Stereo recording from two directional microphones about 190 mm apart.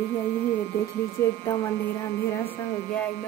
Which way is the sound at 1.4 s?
15° left (ahead or behind).